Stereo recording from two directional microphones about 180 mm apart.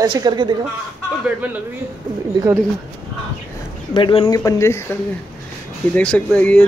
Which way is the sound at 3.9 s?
25° left (ahead or behind).